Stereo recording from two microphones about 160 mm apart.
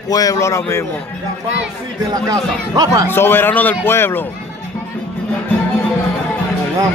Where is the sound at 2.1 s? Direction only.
20° right (ahead or behind).